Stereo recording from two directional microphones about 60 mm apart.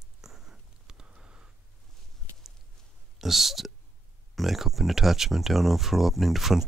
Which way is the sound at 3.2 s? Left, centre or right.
Centre.